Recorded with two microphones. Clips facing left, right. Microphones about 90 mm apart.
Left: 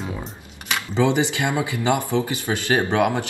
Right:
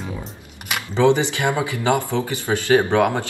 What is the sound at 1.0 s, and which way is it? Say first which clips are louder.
Speech: right 3 dB; 20° left (ahead or behind).